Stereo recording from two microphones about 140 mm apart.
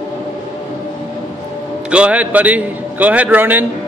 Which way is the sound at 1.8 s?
10° right (ahead or behind).